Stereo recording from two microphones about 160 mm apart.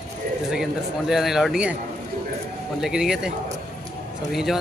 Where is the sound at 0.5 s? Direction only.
Centre (ahead or behind).